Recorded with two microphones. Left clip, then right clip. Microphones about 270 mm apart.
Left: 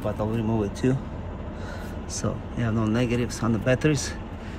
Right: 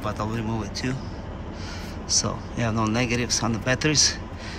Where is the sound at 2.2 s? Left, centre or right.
Centre.